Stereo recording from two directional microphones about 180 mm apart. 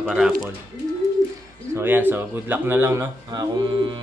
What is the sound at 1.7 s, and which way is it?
Speech, 10° right (ahead or behind).